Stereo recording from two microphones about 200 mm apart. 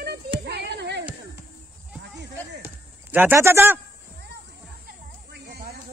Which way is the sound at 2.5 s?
10° right (ahead or behind).